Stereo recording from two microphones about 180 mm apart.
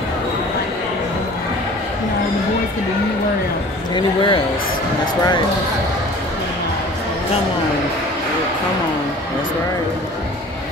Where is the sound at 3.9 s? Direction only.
25° left (ahead or behind).